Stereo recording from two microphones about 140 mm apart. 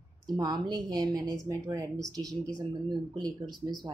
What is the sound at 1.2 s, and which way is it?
Speech, 5° left (ahead or behind).